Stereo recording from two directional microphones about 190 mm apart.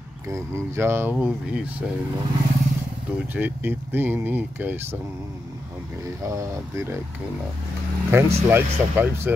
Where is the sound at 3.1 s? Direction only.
10° right (ahead or behind).